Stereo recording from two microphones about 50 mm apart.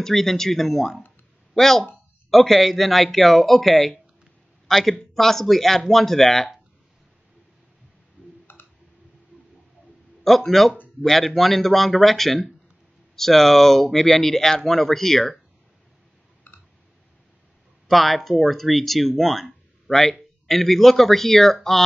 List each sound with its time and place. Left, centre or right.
0.0 s a man's voice: centre
8.5 s tick: left
10.2 s speech: centre
17.8 s speech: centre